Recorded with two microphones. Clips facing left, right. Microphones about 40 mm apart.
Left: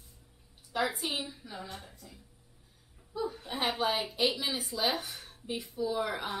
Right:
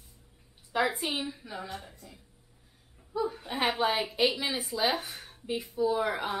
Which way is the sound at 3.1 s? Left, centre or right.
Centre.